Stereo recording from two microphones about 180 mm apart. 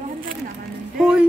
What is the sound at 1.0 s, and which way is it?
Speech, 5° right (ahead or behind).